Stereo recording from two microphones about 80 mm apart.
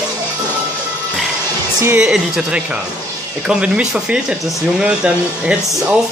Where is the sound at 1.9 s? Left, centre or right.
Centre.